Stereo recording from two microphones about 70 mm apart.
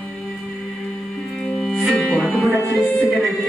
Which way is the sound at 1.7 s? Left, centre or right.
Centre.